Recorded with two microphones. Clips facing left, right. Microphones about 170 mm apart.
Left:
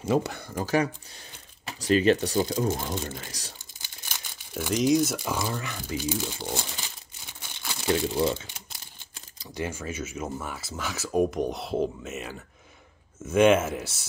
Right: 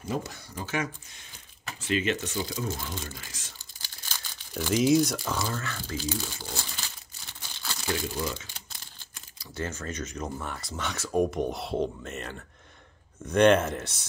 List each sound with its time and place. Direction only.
0.0 s speech: 70° left (ahead or behind); by 3.5 s 35° left (ahead or behind)
4.6 s speech: centre (ahead or behind)
5.2 s speech: 15° left (ahead or behind)
9.5 s speech: 10° left (ahead or behind)